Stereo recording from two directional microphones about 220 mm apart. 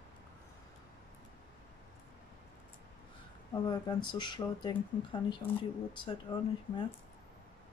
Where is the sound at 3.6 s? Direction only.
20° left (ahead or behind).